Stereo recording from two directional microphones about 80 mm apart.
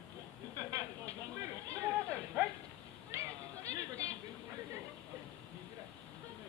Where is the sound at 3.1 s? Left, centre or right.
Right.